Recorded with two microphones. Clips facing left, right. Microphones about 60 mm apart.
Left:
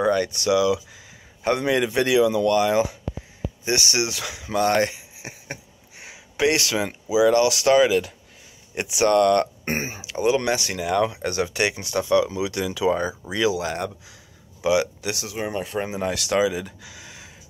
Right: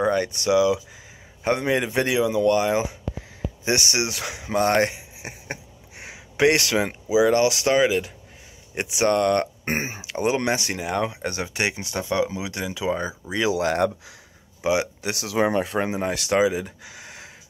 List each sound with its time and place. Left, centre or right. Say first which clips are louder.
0.0 s speech: left 1 dB; right
3.9 s speech: left 1 dB; right
4.9 s a sound: right 2 dB; right
7.1 s speech: left 1 dB; right
10.0 s speech: left 3 dB; right
10.3 s speech: left 1 dB; right; by 13.1 s centre
13.5 s speech: right 4 dB; right
14.6 s speech: left 2 dB; right
15.2 s speech: right 10 dB; right
16.0 s speech: even; right
16.8 s a sound: right 1 dB; right